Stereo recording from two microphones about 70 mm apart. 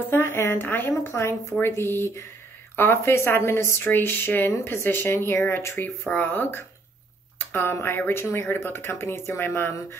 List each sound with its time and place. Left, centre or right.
0.1 s speech: left
7.3 s a sound: left
8.1 s speech: left